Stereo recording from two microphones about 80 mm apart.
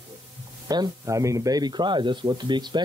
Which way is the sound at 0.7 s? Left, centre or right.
Right.